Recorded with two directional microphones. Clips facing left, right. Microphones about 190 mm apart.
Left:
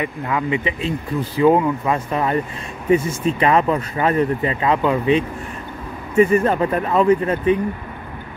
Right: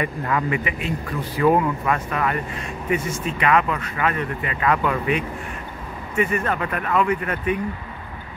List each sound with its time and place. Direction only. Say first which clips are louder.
0.0 s speech: left 1 dB; 10° left (ahead or behind)
0.5 s speech: left 3 dB; 30° left (ahead or behind)